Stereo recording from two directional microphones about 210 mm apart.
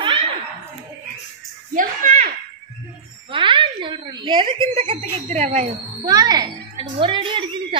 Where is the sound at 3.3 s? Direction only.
25° right (ahead or behind).